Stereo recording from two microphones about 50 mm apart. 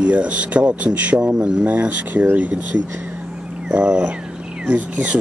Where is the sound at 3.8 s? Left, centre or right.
Right.